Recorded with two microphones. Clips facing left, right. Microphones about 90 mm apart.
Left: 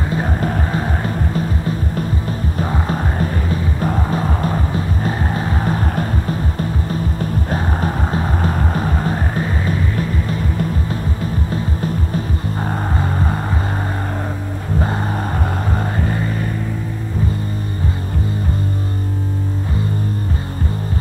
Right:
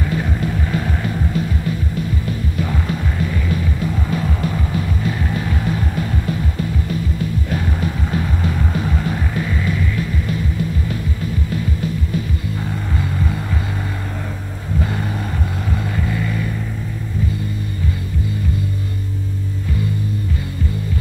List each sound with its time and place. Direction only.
0.1 s music: 45° left (ahead or behind)
15.7 s music: 45° left (ahead or behind)